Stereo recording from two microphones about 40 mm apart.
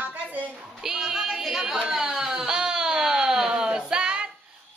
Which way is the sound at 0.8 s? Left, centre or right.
Centre.